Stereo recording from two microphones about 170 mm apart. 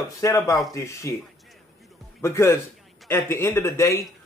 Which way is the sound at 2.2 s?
15° left (ahead or behind).